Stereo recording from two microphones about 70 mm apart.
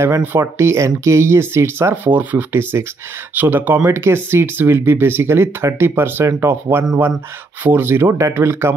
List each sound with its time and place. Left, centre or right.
0.2 s speech: right
0.6 s speech: right
2.0 s speech: right
3.8 s speech: right